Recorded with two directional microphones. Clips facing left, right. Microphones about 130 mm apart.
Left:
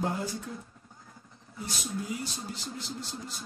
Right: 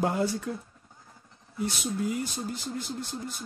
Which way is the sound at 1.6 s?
55° right (ahead or behind).